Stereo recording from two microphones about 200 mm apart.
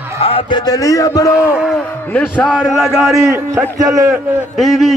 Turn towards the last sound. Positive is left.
turn(degrees=0)  # may be behind; listen again after turning